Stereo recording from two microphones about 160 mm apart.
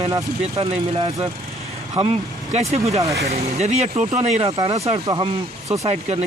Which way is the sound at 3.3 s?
45° right (ahead or behind).